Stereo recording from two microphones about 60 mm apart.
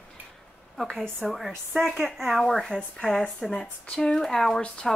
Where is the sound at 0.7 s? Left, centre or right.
Centre.